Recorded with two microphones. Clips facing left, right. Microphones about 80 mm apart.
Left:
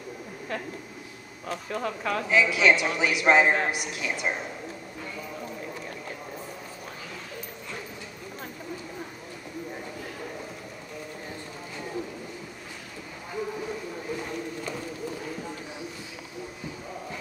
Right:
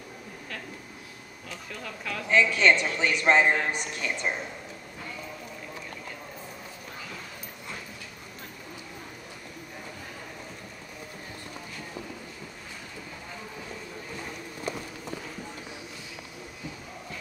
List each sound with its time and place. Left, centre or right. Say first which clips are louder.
1.5 s speech: left 9 dB; left
2.2 s a man's voice: even; centre